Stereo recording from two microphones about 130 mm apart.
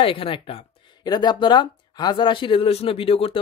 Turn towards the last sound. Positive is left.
turn(degrees=45)  # may be behind; listen again after turning